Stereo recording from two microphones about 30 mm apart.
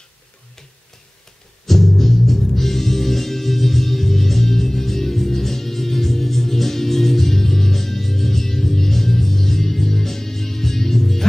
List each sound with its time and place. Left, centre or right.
1.7 s music: centre